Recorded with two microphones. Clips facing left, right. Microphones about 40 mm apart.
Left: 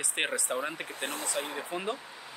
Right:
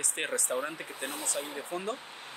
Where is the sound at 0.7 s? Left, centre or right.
Left.